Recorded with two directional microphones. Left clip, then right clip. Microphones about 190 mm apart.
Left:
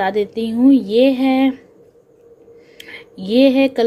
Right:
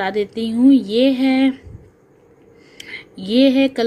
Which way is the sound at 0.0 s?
Centre (ahead or behind).